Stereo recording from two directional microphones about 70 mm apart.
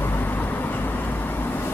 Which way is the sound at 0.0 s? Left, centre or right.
Left.